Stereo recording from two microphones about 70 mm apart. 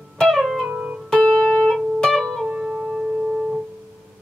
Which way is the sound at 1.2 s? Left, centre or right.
Centre.